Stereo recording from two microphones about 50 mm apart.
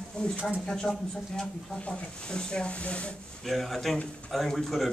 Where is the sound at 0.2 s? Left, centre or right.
Left.